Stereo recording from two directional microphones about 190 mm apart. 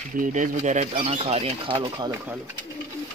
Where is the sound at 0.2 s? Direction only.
40° right (ahead or behind).